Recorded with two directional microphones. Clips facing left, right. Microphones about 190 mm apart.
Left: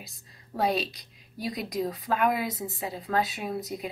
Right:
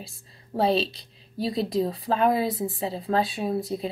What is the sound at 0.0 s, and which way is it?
A woman's voice, 30° right (ahead or behind).